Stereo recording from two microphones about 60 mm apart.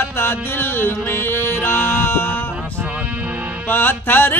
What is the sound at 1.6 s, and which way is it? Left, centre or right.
Music, left.